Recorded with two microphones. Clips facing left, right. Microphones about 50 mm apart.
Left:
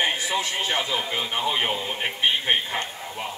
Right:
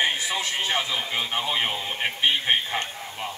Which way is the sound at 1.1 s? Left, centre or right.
Centre.